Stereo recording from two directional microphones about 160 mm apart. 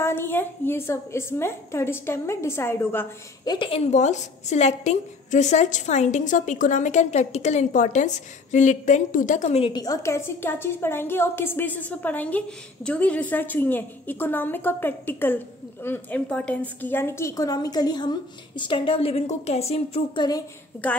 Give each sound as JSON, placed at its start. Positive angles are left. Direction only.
{"t": 0.0, "sound": "a woman's voice", "side_deg": 15}
{"t": 3.4, "sound": "a woman's voice", "side_deg": 30}
{"t": 9.7, "sound": "a woman's voice", "side_deg": 25}